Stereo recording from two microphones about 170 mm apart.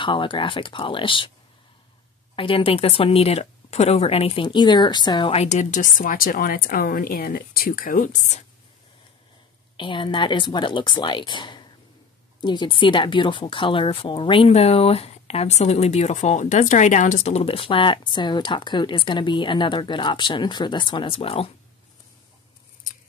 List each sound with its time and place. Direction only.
0.0 s speech: 30° left (ahead or behind)
2.3 s speech: 30° left (ahead or behind)
9.8 s speech: 30° left (ahead or behind)